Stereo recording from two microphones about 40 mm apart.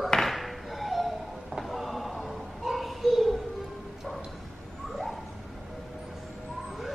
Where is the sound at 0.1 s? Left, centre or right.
Centre.